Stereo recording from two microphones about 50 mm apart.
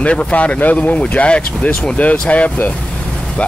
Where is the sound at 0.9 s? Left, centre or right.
Left.